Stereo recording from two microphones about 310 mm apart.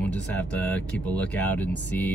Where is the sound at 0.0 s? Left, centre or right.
Centre.